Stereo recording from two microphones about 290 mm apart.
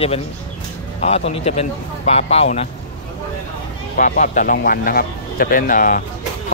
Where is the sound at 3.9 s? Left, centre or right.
Left.